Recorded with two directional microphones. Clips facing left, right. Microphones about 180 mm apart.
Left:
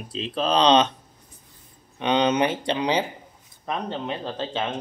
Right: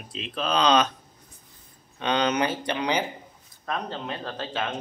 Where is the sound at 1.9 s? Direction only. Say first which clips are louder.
Left 3 dB; 20° left (ahead or behind).